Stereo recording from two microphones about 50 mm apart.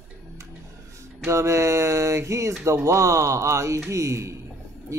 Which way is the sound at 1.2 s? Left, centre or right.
Right.